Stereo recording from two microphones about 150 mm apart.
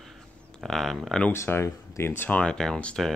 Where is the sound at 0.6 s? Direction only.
Centre (ahead or behind).